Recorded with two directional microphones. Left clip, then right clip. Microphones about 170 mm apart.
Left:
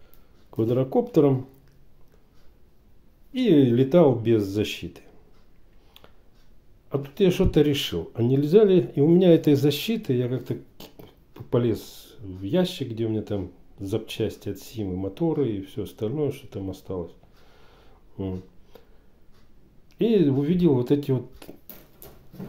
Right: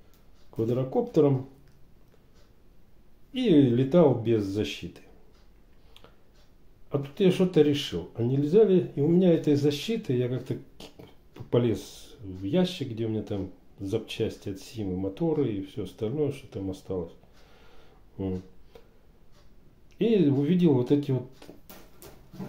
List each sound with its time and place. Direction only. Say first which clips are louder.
0.6 s speech: left 4 dB; 55° left (ahead or behind)
3.3 s speech: left 3 dB; 35° left (ahead or behind)
6.9 s speech: left 2 dB; 25° left (ahead or behind)
20.0 s speech: left 2 dB; 30° left (ahead or behind)